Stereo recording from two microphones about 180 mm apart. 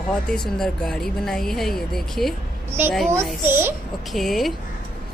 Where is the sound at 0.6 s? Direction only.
Centre (ahead or behind).